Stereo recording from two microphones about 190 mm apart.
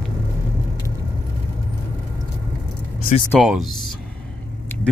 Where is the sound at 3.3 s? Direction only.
Centre (ahead or behind).